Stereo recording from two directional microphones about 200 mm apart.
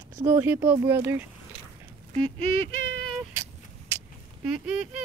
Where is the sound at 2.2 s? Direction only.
80° right.